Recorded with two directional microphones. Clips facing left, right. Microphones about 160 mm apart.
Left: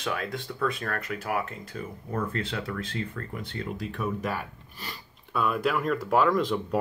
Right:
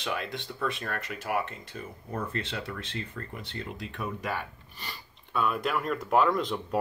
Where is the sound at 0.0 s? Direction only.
Centre (ahead or behind).